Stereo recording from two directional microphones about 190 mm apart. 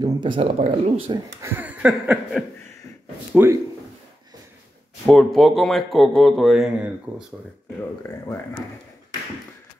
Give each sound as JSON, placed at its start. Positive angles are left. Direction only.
{"t": 0.0, "sound": "speech", "side_deg": -25}
{"t": 1.4, "sound": "a sound", "side_deg": -5}
{"t": 5.0, "sound": "speech", "side_deg": 0}